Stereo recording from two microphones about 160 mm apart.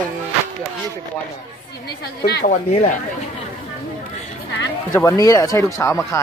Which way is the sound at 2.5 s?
50° left (ahead or behind).